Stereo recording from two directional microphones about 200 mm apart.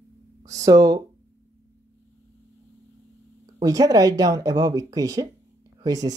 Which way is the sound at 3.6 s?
20° right (ahead or behind).